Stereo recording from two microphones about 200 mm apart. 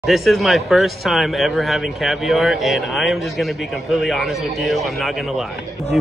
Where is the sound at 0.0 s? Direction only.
Centre (ahead or behind).